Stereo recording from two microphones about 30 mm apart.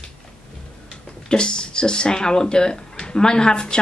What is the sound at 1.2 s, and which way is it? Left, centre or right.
Speech, left.